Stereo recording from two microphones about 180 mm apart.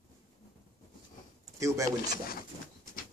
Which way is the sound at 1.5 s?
15° right (ahead or behind).